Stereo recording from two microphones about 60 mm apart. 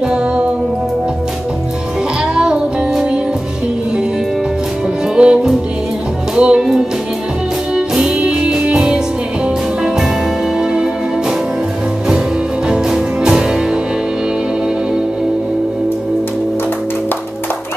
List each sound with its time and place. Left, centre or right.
2.3 s music: centre
5.1 s music: centre
7.7 s music: centre
10.6 s music: centre
12.6 s music: centre